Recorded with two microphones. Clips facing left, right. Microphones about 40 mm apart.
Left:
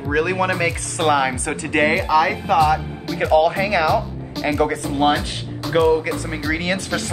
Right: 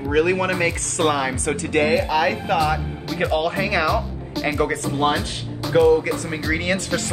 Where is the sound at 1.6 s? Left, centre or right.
Left.